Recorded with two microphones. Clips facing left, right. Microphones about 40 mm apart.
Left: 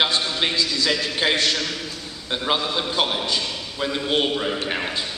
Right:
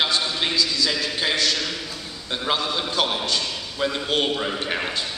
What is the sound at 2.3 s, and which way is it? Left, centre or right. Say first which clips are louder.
A man's voice: left 1 dB; centre.